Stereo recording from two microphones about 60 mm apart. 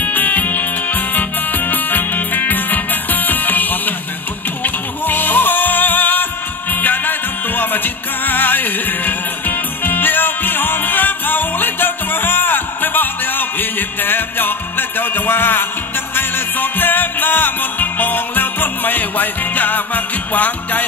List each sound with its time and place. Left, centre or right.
0.0 s music: left